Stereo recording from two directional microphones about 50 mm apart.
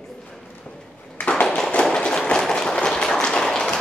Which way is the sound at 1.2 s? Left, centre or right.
Left.